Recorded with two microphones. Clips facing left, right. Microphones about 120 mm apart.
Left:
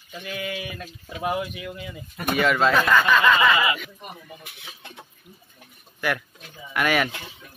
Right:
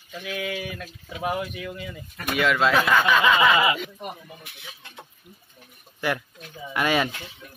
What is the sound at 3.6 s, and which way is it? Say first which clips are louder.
Speech: right 2 dB; 20° right (ahead or behind).